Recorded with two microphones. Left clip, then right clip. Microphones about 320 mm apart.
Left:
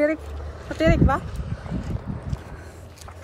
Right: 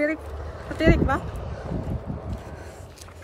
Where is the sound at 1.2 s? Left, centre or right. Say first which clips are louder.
Right 3 dB; right.